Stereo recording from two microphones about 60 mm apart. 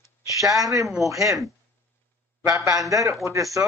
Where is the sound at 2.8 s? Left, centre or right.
Right.